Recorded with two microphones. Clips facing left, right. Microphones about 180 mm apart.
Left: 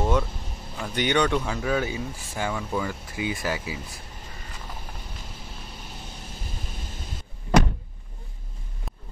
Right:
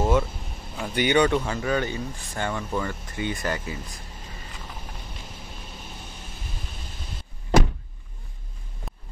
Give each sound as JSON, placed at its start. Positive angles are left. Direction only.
{"t": 0.0, "sound": "vehicle", "side_deg": -5}
{"t": 0.7, "sound": "speech", "side_deg": -5}